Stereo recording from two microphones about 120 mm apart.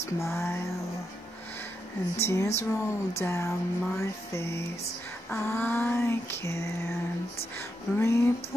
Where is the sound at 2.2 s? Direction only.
25° left (ahead or behind).